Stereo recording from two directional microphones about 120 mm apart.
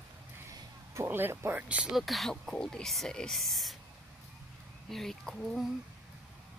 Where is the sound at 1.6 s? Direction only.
10° right (ahead or behind).